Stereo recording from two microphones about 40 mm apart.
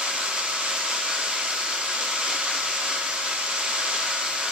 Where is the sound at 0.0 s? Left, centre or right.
Centre.